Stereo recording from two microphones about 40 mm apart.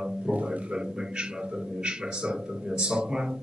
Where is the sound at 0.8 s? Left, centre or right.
Centre.